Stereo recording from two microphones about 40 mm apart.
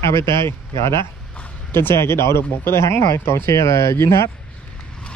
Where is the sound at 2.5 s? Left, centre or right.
Left.